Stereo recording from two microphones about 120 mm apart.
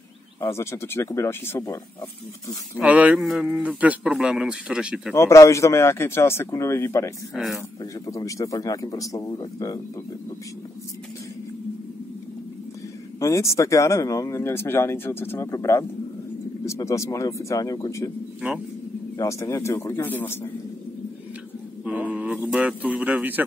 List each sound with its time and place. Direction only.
0.4 s speech: 25° left (ahead or behind)
2.8 s speech: 10° right (ahead or behind)
5.1 s speech: 25° left (ahead or behind)
7.3 s speech: centre (ahead or behind)
7.8 s speech: 30° left (ahead or behind)
13.2 s speech: 25° left (ahead or behind)
19.1 s speech: 25° left (ahead or behind)
21.8 s a sound: 10° right (ahead or behind)
22.5 s speech: 10° right (ahead or behind)